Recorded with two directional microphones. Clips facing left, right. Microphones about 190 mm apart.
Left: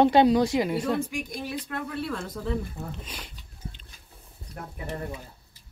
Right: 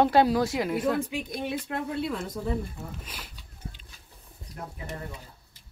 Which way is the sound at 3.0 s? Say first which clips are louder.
Left 2 dB; 5° right (ahead or behind).